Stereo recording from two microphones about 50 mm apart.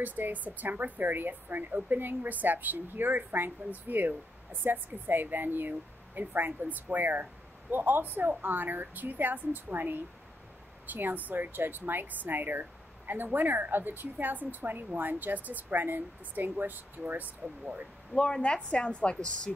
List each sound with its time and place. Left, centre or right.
0.0 s a woman's voice: right
18.1 s a woman's voice: centre